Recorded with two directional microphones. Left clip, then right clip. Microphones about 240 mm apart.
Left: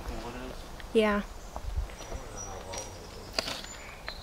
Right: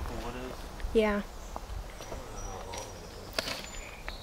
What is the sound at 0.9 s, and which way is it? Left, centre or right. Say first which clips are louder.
Speech: left 1 dB; centre.